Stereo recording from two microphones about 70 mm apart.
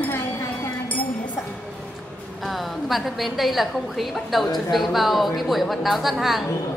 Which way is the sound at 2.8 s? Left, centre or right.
Centre.